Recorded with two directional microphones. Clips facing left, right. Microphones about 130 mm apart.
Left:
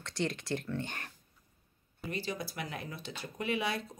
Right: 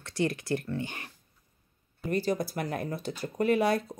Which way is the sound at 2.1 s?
45° right (ahead or behind).